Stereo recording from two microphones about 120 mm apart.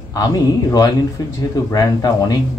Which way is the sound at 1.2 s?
30° left (ahead or behind).